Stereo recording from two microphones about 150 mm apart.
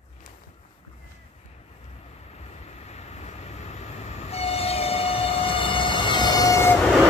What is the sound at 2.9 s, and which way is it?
Train, 45° left (ahead or behind).